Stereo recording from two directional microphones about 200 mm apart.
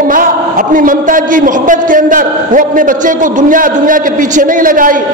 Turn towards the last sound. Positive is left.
turn(degrees=-45)  # may be behind; listen again after turning